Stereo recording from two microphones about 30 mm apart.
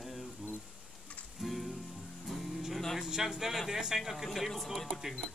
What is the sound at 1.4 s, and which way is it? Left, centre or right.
Music, centre.